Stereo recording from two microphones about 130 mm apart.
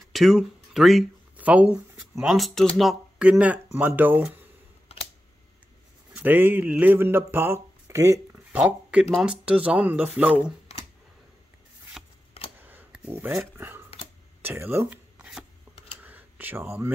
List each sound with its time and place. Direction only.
0.1 s speech: 5° right (ahead or behind)
1.3 s a sound: 10° right (ahead or behind)
2.1 s speech: centre (ahead or behind)
6.1 s speech: 15° right (ahead or behind)
12.0 s shuffling cards: centre (ahead or behind)
12.6 s a sound: 10° right (ahead or behind)
13.4 s speech: 15° right (ahead or behind)
15.1 s chopping: 5° right (ahead or behind)
16.0 s a sound: 15° right (ahead or behind)